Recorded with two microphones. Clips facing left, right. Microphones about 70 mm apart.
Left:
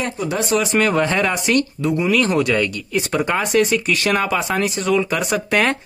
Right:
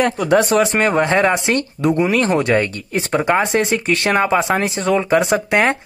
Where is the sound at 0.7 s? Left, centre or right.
Right.